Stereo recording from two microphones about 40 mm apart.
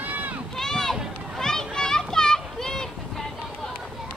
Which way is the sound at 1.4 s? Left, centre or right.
Centre.